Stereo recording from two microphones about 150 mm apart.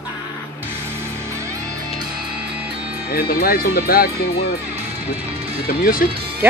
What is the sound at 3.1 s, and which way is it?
Speech, 75° left (ahead or behind).